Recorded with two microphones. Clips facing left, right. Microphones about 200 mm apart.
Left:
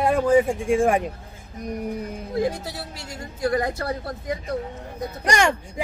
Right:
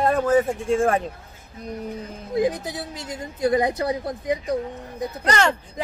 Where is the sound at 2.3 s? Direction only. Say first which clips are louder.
Right 3 dB; 20° right (ahead or behind).